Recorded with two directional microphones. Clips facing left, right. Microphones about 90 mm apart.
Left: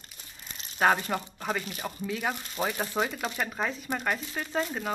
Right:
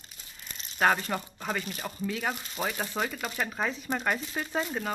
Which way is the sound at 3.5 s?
Centre (ahead or behind).